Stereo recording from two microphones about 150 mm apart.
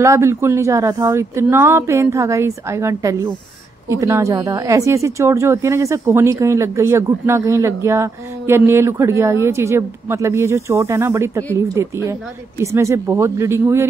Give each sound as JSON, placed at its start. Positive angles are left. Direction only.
{"t": 0.0, "sound": "speech", "side_deg": -20}
{"t": 12.7, "sound": "speech", "side_deg": -20}